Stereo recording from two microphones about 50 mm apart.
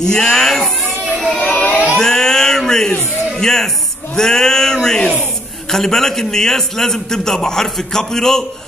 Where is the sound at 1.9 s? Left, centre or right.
Centre.